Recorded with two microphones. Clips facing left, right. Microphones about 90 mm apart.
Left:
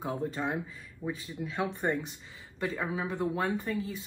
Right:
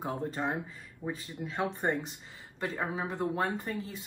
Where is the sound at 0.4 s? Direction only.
30° right (ahead or behind).